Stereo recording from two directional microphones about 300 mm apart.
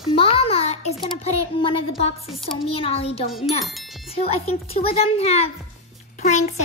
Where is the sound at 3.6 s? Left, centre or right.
Centre.